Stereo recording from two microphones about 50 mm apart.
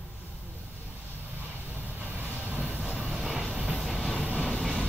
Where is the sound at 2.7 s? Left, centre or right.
Left.